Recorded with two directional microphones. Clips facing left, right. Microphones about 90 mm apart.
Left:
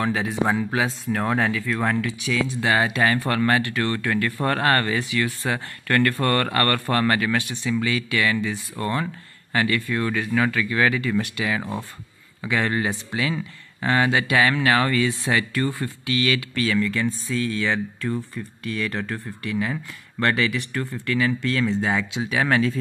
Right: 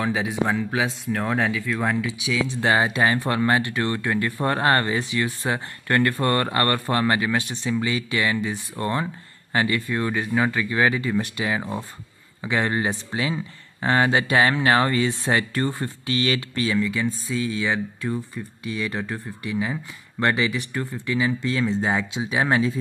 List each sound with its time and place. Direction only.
0.0 s speech: 5° right (ahead or behind)
0.5 s speech: 5° left (ahead or behind)
2.6 s speech: 20° right (ahead or behind)
16.8 s speech: 10° right (ahead or behind)